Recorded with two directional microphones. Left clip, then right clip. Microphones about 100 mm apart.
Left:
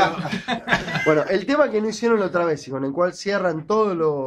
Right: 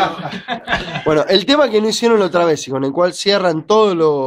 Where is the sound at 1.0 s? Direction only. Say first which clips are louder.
Right 8 dB; 50° right (ahead or behind).